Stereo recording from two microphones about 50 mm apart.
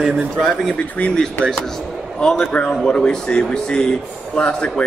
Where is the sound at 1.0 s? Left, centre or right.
Left.